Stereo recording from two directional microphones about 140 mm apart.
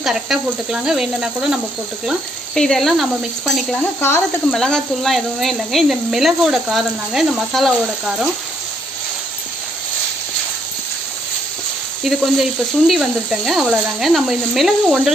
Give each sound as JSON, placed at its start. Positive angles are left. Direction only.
{"t": 0.0, "sound": "speech", "side_deg": -5}
{"t": 12.0, "sound": "speech", "side_deg": 0}